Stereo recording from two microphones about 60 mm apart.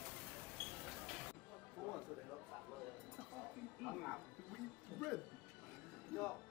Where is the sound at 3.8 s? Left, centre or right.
Centre.